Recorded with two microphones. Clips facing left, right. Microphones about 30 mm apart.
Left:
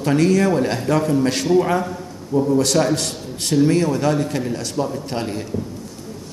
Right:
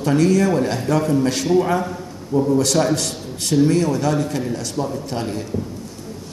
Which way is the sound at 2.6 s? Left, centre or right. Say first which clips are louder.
Even; centre.